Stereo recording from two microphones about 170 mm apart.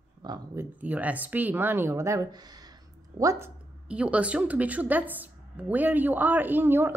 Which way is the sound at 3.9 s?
5° right (ahead or behind).